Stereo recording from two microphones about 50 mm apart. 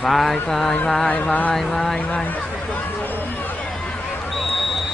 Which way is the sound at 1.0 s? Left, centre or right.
Left.